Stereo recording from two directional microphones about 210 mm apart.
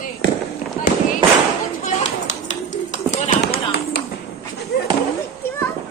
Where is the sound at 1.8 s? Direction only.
35° left (ahead or behind).